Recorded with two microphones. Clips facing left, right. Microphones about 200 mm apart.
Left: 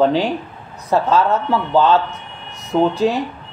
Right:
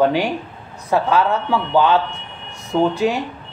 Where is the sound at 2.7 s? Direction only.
15° left (ahead or behind).